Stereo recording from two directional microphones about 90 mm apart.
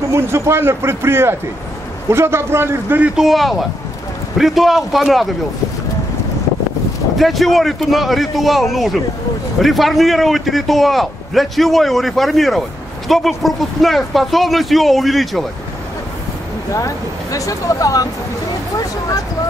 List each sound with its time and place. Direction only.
0.1 s a man's voice: 30° right (ahead or behind)
3.2 s a man's voice: centre (ahead or behind)
7.2 s a man's voice: centre (ahead or behind)
16.7 s speech: 40° left (ahead or behind)